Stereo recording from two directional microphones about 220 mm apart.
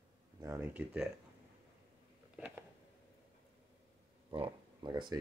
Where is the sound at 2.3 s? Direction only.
10° right (ahead or behind).